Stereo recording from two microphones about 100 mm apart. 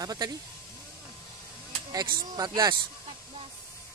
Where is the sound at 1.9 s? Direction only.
40° right (ahead or behind).